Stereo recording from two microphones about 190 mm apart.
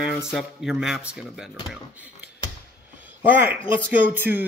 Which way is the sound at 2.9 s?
10° right (ahead or behind).